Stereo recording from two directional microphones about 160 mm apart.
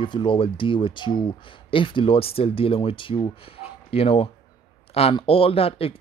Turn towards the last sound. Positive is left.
turn(degrees=35)  # may be behind; listen again after turning